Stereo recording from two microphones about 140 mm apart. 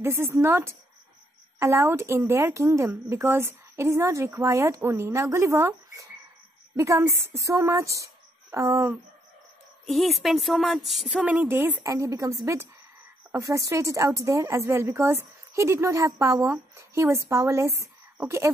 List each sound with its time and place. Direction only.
0.0 s a woman's voice: 20° right (ahead or behind)
9.8 s a woman's voice: centre (ahead or behind); by 18.5 s 15° right (ahead or behind)